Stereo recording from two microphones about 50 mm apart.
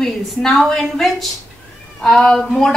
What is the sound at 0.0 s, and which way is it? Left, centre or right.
A woman's voice, centre.